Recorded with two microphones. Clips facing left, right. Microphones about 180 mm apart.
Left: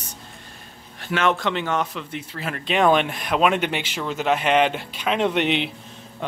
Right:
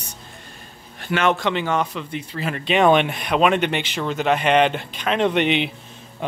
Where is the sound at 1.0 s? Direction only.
Centre (ahead or behind).